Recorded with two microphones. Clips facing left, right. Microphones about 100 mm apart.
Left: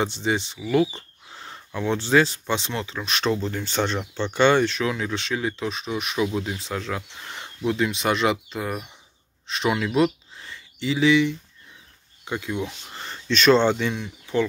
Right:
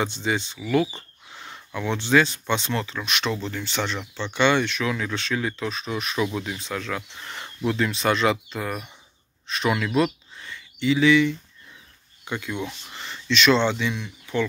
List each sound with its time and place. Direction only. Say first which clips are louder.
0.0 s speech: left 1 dB; 25° left (ahead or behind)
1.3 s a sound: even; 30° left (ahead or behind)
2.0 s speech: even; 35° left (ahead or behind)
12.8 s speech: even; 40° left (ahead or behind)